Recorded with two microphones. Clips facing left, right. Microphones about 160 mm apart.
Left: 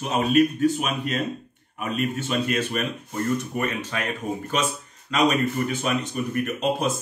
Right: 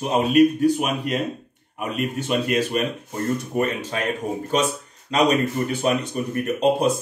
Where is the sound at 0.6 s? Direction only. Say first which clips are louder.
Right 3 dB; 15° right (ahead or behind).